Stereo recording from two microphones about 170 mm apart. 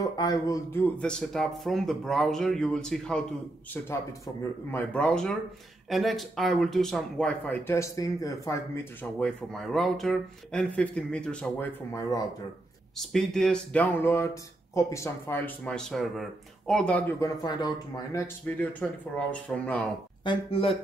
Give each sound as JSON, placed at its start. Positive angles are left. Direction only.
{"t": 0.0, "sound": "speech", "side_deg": 20}
{"t": 0.8, "sound": "speech", "side_deg": 5}
{"t": 4.6, "sound": "speech", "side_deg": 10}
{"t": 9.2, "sound": "speech", "side_deg": 0}
{"t": 11.9, "sound": "speech", "side_deg": 20}
{"t": 12.9, "sound": "speech", "side_deg": 0}
{"t": 17.2, "sound": "speech", "side_deg": 25}
{"t": 20.2, "sound": "speech", "side_deg": 35}